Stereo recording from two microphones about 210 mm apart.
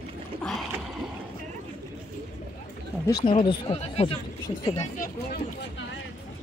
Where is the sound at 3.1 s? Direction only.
20° left (ahead or behind).